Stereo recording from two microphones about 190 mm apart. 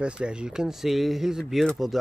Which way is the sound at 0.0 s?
5° right (ahead or behind).